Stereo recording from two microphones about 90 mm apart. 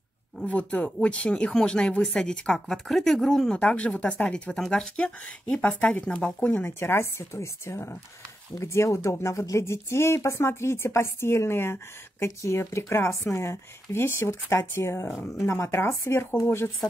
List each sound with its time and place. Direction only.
0.5 s speech: 15° left (ahead or behind)